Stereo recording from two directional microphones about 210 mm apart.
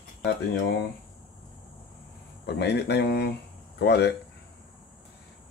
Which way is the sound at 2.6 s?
50° left (ahead or behind).